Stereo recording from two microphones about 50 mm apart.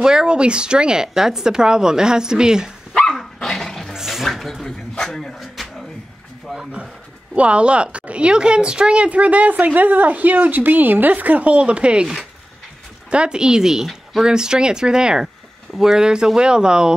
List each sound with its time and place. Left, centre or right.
0.0 s a woman's voice: centre
3.0 s dog: centre
3.9 s bathtub: centre
4.3 s speech: centre
6.6 s speech: right
13.1 s a woman's voice: centre